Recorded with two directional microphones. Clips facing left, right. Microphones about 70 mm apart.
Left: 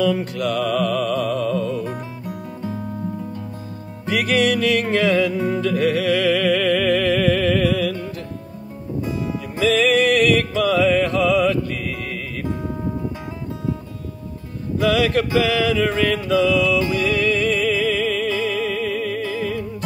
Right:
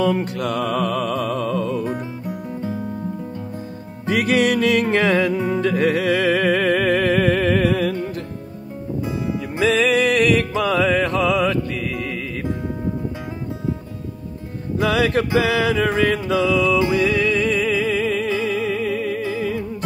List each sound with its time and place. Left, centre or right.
0.0 s music: right
4.0 s music: right
9.6 s music: right
14.8 s mantra: right